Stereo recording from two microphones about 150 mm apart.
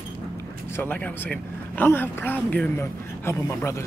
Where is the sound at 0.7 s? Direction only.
15° left (ahead or behind).